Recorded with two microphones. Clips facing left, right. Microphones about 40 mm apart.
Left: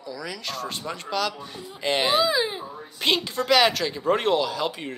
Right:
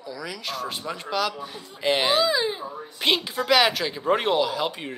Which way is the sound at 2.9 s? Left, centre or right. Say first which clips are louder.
Even; centre.